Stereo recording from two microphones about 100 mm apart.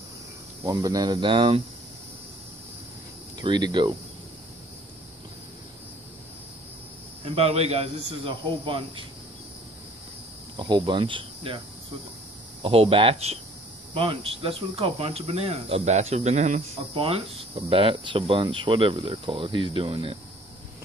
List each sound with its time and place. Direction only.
0.7 s speech: 40° right (ahead or behind); by 1.6 s 55° right (ahead or behind)
3.3 s speech: 45° right (ahead or behind)
7.2 s a man's voice: 90° right; by 9.0 s 60° right (ahead or behind)
10.6 s cricket: 55° right (ahead or behind)
12.6 s speech: 70° right (ahead or behind)
13.9 s speech: 65° right (ahead or behind)